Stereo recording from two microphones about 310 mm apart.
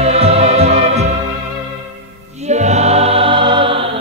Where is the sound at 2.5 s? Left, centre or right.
Right.